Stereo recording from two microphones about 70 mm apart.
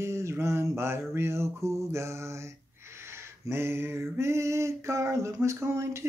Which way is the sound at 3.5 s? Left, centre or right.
Right.